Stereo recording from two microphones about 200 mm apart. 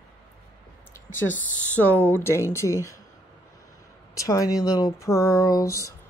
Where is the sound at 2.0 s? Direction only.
10° left (ahead or behind).